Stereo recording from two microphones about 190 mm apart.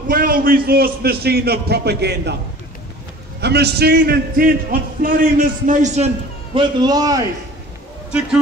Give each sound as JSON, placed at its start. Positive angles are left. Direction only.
{"t": 0.1, "sound": "a man's voice", "side_deg": -50}
{"t": 3.3, "sound": "a man's voice", "side_deg": -60}
{"t": 6.5, "sound": "a man's voice", "side_deg": -25}